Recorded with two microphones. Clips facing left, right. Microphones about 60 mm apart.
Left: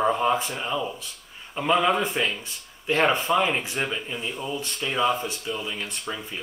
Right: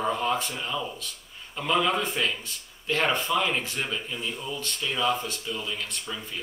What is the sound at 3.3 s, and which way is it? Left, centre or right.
A man's voice, left.